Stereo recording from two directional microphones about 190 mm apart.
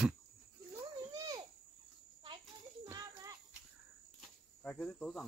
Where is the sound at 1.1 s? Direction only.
20° right (ahead or behind).